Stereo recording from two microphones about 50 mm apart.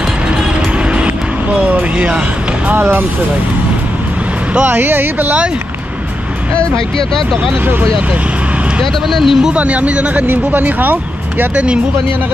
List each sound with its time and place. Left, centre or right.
1.6 s a sound: right
2.7 s speech: right
4.6 s speech: right
6.5 s speech: left
9.1 s speech: centre
9.5 s speech: right
10.2 s speech: right
11.5 s speech: right